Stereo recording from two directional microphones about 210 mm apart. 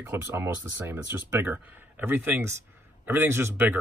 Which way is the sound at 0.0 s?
10° right (ahead or behind).